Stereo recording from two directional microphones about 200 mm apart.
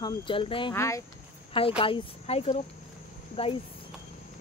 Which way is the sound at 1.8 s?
25° left (ahead or behind).